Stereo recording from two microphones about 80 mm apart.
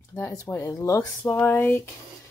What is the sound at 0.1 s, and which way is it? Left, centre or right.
Speech, left.